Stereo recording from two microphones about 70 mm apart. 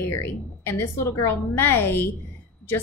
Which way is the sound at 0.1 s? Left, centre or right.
Left.